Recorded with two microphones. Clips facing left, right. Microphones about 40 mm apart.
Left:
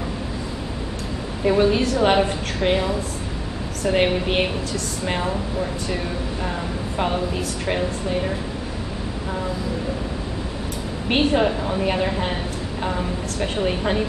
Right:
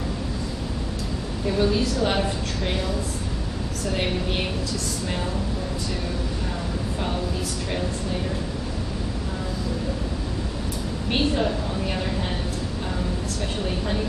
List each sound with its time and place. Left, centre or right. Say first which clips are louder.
1.4 s a woman's voice: left 5 dB; left
7.0 s a woman's voice: left 7 dB; left
11.1 s a woman's voice: left 5 dB; left
13.4 s a woman's voice: left 8 dB; left